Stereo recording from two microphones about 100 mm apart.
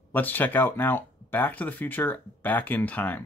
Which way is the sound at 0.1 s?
20° left (ahead or behind).